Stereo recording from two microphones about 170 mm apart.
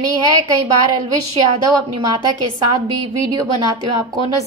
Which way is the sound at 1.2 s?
20° right (ahead or behind).